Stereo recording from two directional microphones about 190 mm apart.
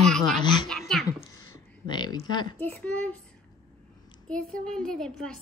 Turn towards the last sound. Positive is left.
turn(degrees=5)  # may be behind; listen again after turning